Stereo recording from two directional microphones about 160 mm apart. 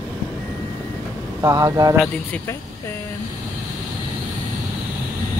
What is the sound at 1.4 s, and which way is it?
Speech, 20° right (ahead or behind).